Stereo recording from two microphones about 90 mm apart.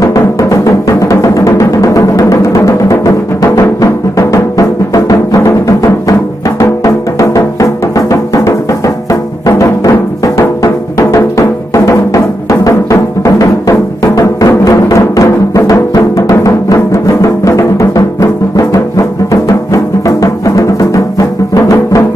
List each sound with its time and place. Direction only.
0.0 s music: 35° left (ahead or behind)